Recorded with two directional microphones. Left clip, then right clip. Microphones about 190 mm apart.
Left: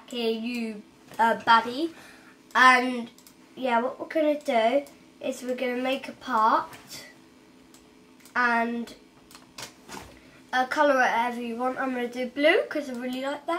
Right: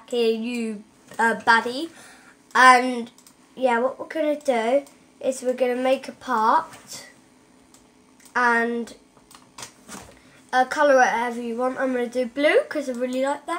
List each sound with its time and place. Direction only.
0.1 s a woman's voice: 40° right (ahead or behind)
8.3 s speech: 40° right (ahead or behind)
10.5 s a woman's voice: 40° right (ahead or behind)